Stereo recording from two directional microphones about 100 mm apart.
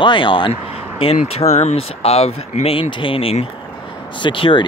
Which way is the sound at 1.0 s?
80° left.